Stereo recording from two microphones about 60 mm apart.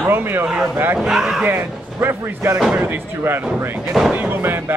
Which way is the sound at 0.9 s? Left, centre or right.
Centre.